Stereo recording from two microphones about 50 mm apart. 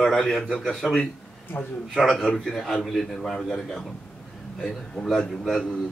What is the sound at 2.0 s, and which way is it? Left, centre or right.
A man's voice, centre.